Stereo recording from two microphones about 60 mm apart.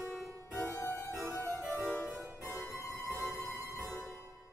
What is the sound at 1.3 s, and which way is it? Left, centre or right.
Harpsichord, left.